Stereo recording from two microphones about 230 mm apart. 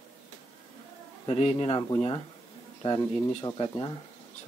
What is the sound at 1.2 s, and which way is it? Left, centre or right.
Speech, left.